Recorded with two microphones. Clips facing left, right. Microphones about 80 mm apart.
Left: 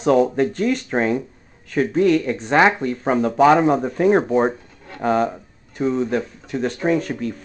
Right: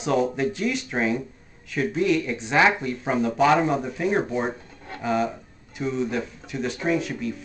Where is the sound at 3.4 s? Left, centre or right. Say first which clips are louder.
Left 6 dB; left.